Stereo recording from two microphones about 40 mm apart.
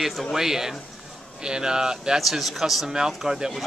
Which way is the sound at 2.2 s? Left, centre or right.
Centre.